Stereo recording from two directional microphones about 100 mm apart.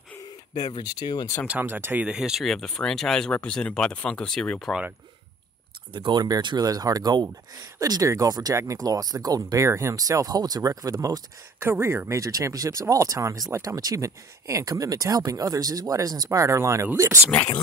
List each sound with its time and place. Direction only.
0.2 s speech: 45° left (ahead or behind)
1.5 s speech: 20° right (ahead or behind); by 4.7 s 5° left (ahead or behind)
5.9 s speech: 45° right (ahead or behind)
11.6 s speech: 25° right (ahead or behind)